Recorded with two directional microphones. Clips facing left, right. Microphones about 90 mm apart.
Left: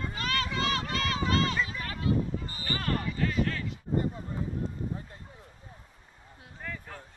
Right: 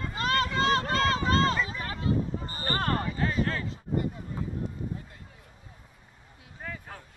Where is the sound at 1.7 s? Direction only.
30° right (ahead or behind).